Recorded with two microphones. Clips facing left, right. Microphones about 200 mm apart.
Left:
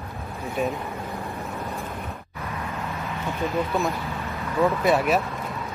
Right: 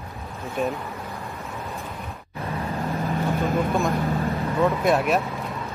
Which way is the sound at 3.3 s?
50° right (ahead or behind).